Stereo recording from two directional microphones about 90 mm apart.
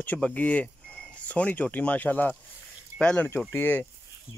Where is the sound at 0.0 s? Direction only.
15° left (ahead or behind).